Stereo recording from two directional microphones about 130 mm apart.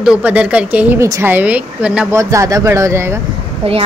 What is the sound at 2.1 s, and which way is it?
Speech, 25° right (ahead or behind).